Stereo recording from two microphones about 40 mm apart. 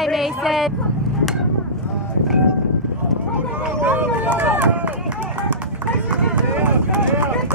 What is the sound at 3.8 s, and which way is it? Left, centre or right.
Run, right.